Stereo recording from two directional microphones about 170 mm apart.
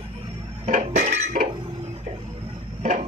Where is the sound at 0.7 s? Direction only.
45° right (ahead or behind).